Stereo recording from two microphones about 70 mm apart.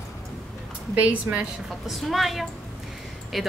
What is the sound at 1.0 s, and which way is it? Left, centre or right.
Speech, centre.